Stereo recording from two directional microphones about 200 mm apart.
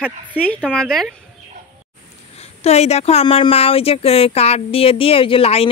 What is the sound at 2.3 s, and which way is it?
Speech, 30° left (ahead or behind).